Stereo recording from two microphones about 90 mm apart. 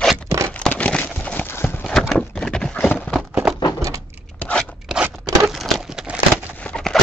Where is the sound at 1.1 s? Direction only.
15° left (ahead or behind).